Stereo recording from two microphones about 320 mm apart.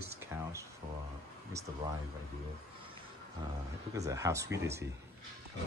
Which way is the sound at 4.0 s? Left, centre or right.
Centre.